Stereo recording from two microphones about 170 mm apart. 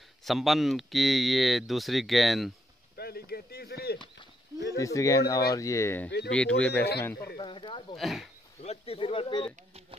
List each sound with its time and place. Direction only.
0.2 s speech: centre (ahead or behind)
3.0 s speech: 65° left (ahead or behind)
4.7 s speech: 20° left (ahead or behind)
6.8 s speech: 70° left (ahead or behind)
7.3 s speech: 30° left (ahead or behind)
7.9 s speech: centre (ahead or behind)
8.6 s speech: 35° left (ahead or behind)